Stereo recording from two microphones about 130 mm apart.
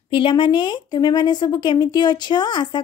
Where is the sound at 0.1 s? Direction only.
40° left (ahead or behind).